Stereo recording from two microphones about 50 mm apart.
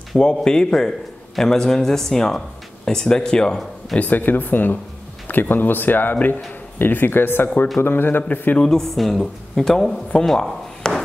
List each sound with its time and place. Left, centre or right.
0.2 s a man's voice: centre
4.0 s speech: left
8.2 s speech: left
8.6 s a woman's voice: centre